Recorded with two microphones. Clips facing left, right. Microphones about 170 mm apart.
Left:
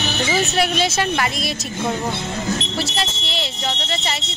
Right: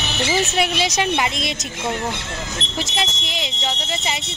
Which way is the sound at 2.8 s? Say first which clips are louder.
Left 1 dB; 15° right (ahead or behind).